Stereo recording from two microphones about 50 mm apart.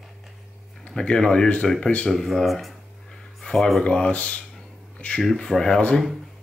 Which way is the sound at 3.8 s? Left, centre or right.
Centre.